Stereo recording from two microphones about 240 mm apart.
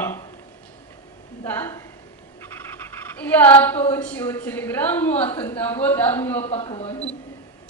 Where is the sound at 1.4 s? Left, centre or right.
Centre.